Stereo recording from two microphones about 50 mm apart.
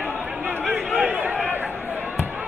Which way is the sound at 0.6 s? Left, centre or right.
Centre.